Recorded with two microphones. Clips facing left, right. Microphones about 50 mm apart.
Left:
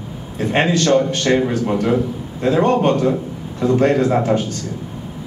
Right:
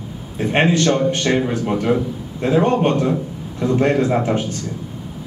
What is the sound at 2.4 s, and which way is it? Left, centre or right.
Speech, centre.